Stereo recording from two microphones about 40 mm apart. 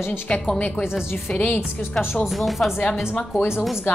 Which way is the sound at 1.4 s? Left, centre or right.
Left.